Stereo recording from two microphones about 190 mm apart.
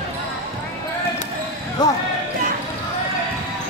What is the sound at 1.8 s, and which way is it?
Basketball bounce, 20° left (ahead or behind).